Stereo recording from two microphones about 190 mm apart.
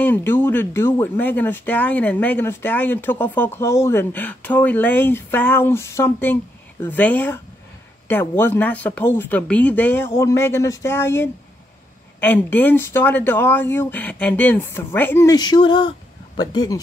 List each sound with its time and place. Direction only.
0.0 s speech: 10° left (ahead or behind)